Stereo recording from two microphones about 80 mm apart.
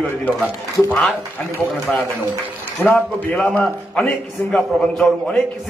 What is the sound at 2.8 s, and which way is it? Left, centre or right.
Speech, left.